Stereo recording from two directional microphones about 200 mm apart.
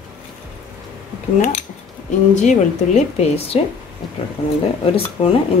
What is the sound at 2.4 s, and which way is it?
Speech, 35° left (ahead or behind).